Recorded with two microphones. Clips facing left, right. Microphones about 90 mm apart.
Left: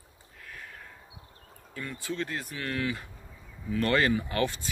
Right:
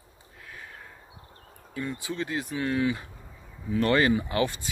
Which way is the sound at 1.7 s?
15° right (ahead or behind).